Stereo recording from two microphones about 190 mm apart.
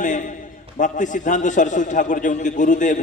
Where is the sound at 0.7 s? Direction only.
40° left (ahead or behind).